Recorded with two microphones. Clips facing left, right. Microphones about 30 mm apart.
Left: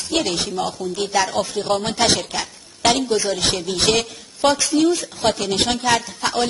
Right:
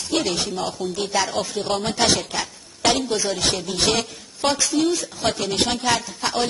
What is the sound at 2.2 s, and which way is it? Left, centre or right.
A woman's voice, centre.